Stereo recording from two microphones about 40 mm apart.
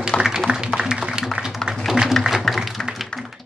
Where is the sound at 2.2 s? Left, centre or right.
Centre.